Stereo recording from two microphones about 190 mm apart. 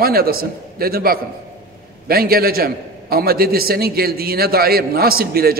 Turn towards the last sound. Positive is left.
turn(degrees=-55)  # may be behind; listen again after turning